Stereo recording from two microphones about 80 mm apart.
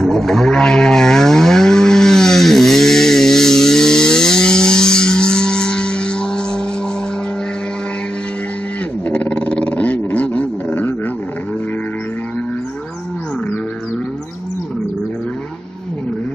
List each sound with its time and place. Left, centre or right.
0.0 s vehicle: centre
9.1 s dog: centre